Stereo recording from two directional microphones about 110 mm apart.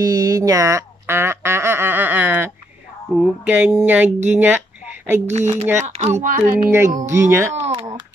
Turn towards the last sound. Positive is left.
turn(degrees=-65)  # may be behind; listen again after turning